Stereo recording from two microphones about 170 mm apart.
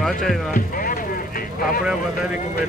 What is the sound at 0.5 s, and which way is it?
Vehicle, 55° left (ahead or behind).